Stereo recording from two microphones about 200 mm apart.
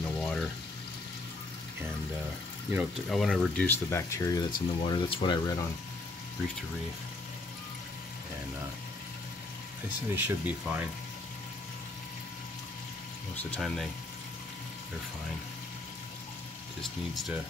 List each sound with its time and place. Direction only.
0.0 s pour: centre (ahead or behind)
2.7 s speech: centre (ahead or behind); by 5.7 s 20° left (ahead or behind)
9.8 s speech: 10° right (ahead or behind)
13.4 s speech: 5° left (ahead or behind)
16.8 s speech: centre (ahead or behind)